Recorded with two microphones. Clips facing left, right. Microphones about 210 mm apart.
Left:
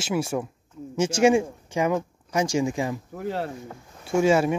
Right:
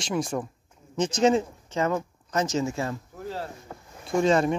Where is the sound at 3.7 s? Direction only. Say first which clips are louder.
Left 2 dB; 10° left (ahead or behind).